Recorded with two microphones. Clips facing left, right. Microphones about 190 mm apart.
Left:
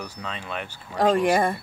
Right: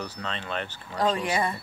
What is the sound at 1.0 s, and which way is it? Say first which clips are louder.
Speech: left 6 dB; 50° left (ahead or behind).